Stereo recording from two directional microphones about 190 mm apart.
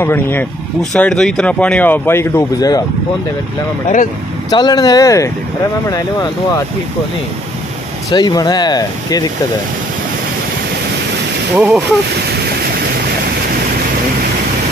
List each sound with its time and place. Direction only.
0.0 s speech: 10° left (ahead or behind)
4.5 s speech: 20° left (ahead or behind)
8.1 s speech: 20° left (ahead or behind)
11.5 s speech: 5° right (ahead or behind)